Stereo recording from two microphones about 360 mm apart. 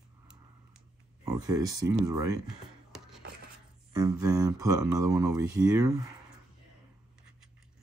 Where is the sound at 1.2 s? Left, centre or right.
Centre.